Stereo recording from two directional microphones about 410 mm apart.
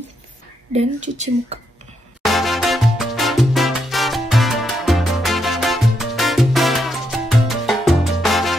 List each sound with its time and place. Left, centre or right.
0.7 s speech: centre
2.2 s salsa music: centre